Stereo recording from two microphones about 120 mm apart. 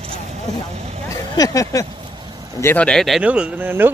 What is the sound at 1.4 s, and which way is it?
Speech, 30° left (ahead or behind).